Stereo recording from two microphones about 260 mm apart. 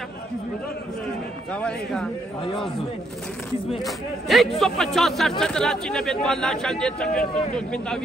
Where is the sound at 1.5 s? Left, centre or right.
Centre.